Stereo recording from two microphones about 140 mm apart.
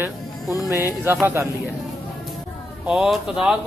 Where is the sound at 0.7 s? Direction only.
25° left (ahead or behind).